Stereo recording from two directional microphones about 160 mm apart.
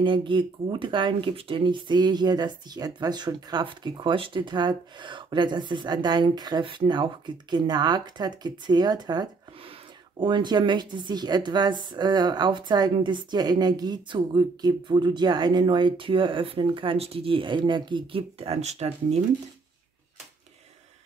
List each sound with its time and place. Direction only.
0.0 s speech: 30° right (ahead or behind)